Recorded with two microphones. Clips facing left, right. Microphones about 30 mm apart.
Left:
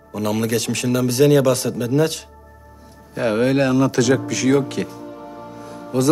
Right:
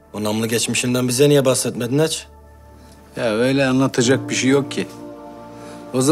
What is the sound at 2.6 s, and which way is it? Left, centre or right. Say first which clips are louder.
Speech: left 1 dB; centre.